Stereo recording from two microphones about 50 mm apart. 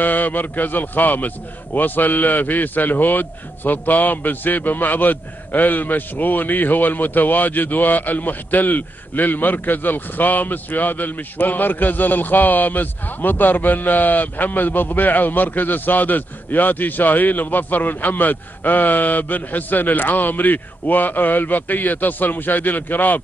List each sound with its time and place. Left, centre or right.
0.0 s a man's voice: left